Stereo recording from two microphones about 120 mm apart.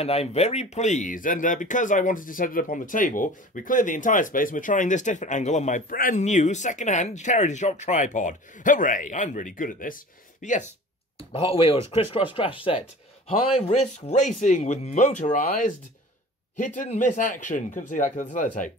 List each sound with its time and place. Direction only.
0.0 s speech: 60° left (ahead or behind); by 10.6 s 90° left
11.1 s speech: 50° left (ahead or behind)
13.5 s speech: 65° left (ahead or behind); by 18.7 s 90° left